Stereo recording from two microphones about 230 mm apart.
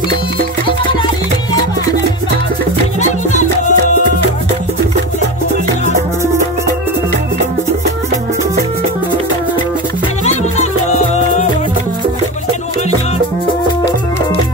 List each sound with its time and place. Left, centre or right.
3.0 s music: left
10.2 s music: left